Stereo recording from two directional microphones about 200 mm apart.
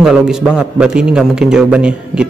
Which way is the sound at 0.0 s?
5° right (ahead or behind).